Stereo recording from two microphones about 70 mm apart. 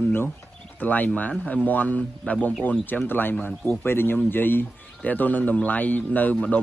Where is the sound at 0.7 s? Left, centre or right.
Left.